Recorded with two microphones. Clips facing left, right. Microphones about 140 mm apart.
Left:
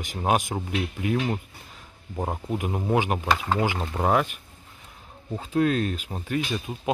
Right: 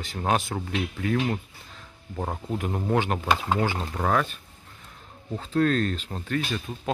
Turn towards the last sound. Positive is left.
turn(degrees=10)  # may be behind; listen again after turning